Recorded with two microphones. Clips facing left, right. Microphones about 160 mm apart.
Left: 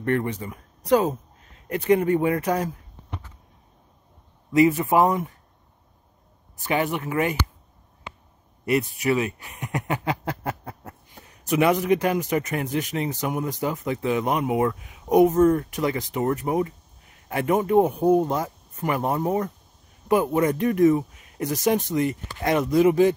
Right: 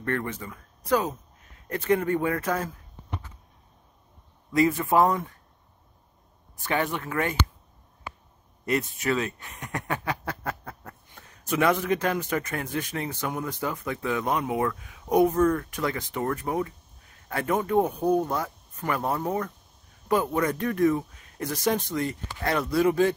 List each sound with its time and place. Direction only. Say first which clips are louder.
0.0 s speech: left 5 dB; 20° left (ahead or behind)
4.5 s speech: left 4 dB; 15° left (ahead or behind)
6.6 s speech: left 3 dB; 15° left (ahead or behind)
8.6 s speech: left 4 dB; 10° left (ahead or behind)